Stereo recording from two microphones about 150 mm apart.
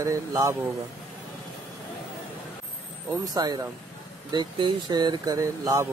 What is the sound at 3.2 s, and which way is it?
Speech, 25° right (ahead or behind).